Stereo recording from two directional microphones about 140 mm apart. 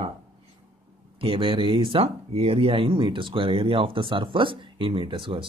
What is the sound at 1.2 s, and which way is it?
Speech, 40° right (ahead or behind).